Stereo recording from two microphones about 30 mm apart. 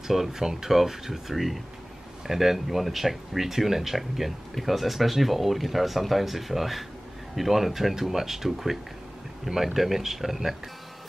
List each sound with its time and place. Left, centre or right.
0.1 s speech: centre
9.8 s speech: centre